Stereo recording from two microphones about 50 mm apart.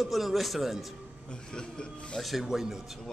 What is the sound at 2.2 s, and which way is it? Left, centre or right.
Speech, centre.